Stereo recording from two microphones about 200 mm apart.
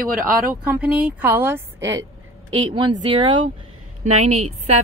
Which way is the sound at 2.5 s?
25° right (ahead or behind).